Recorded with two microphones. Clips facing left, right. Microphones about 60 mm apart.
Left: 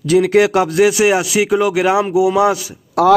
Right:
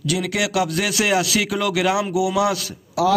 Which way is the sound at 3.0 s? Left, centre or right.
Left.